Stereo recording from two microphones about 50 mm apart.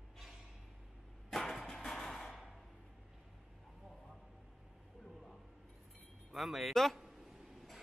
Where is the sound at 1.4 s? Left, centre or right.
Centre.